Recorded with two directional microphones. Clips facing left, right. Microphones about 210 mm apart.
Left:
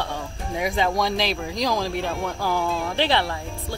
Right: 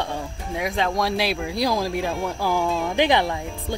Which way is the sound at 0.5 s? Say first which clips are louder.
Left 1 dB; centre (ahead or behind).